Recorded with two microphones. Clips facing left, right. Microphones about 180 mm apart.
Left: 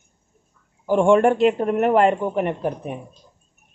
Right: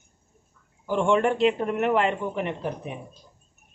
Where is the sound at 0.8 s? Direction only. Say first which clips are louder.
Left 6 dB; 50° left (ahead or behind).